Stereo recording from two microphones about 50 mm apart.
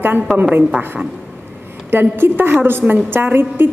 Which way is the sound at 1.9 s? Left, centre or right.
Right.